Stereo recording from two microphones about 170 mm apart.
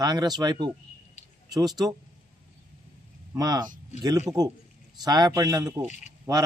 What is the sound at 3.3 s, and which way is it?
A man's voice, 20° right (ahead or behind).